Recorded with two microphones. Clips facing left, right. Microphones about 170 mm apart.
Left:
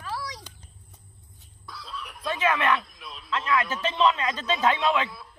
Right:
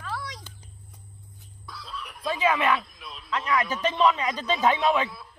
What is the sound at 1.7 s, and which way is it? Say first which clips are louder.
Chicken: even; centre (ahead or behind).